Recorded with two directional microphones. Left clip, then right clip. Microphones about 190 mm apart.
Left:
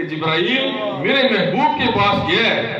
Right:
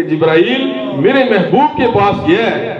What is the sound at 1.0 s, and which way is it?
A man's voice, 50° right (ahead or behind).